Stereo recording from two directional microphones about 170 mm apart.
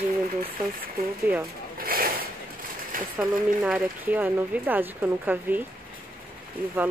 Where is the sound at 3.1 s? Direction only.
5° right (ahead or behind).